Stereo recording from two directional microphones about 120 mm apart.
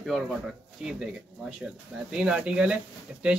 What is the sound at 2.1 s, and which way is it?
Speech, 5° right (ahead or behind).